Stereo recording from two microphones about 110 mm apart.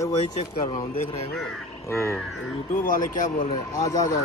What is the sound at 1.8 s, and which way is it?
Speech, 25° left (ahead or behind).